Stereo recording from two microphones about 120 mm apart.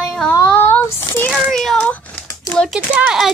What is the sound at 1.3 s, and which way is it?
Speech, centre (ahead or behind).